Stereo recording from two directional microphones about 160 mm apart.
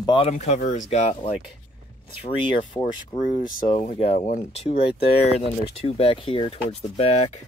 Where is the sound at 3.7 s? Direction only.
40° left (ahead or behind).